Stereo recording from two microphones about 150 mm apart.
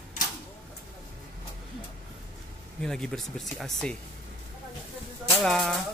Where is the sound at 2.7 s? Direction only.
5° left (ahead or behind).